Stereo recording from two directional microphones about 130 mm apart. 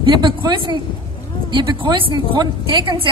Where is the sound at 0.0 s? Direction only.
35° right (ahead or behind).